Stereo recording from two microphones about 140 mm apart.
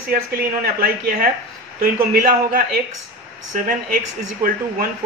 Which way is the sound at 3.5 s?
75° right (ahead or behind).